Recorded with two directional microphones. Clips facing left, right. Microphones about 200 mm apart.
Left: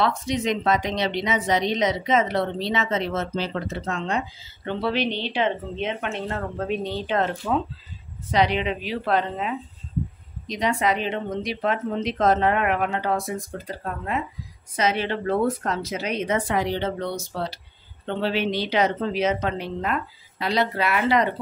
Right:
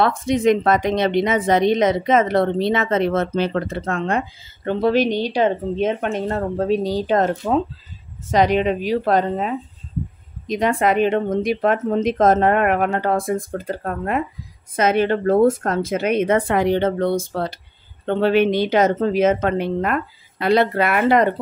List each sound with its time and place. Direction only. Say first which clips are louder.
0.0 s a woman's voice: right 7 dB; 50° right (ahead or behind)
4.6 s a woman's voice: right 7 dB; 45° right (ahead or behind)